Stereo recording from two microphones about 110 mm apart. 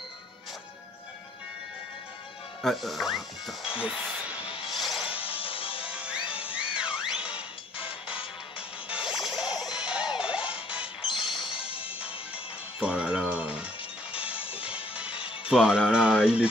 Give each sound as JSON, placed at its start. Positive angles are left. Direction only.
{"t": 2.6, "sound": "speech", "side_deg": 0}
{"t": 4.6, "sound": "music", "side_deg": 0}
{"t": 5.1, "sound": "music", "side_deg": 55}
{"t": 5.9, "sound": "music", "side_deg": -10}
{"t": 7.7, "sound": "music", "side_deg": 55}
{"t": 8.5, "sound": "music", "side_deg": -10}
{"t": 11.1, "sound": "music", "side_deg": 50}
{"t": 11.6, "sound": "music", "side_deg": -10}
{"t": 15.4, "sound": "speech", "side_deg": -5}